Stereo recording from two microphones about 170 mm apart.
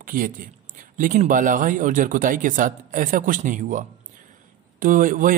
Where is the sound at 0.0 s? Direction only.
55° right (ahead or behind).